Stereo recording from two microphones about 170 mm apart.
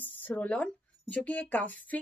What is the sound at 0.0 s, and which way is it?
Speech, 10° left (ahead or behind).